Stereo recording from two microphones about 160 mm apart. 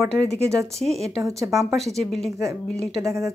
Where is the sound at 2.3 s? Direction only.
20° right (ahead or behind).